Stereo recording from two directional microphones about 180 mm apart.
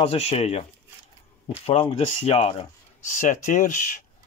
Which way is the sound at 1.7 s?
30° left (ahead or behind).